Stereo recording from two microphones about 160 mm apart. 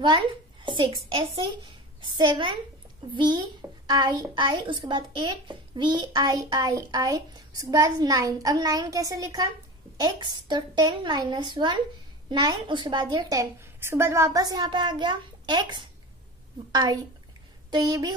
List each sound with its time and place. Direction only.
0.0 s a child's voice: 30° right (ahead or behind)